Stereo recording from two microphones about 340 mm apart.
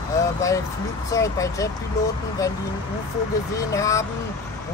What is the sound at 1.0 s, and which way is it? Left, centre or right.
Speech, centre.